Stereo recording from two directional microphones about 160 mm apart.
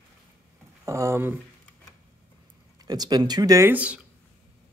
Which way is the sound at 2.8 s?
25° right (ahead or behind).